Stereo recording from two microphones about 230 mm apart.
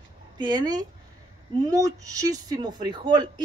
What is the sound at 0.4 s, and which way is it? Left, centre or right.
Speech, centre.